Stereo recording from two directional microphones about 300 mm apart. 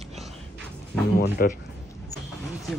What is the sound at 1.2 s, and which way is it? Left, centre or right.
Speech, left.